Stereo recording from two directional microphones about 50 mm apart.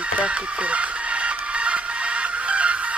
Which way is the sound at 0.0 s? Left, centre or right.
Right.